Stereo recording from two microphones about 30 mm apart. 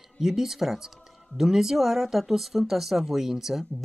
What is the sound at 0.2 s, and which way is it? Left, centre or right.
Speech, centre.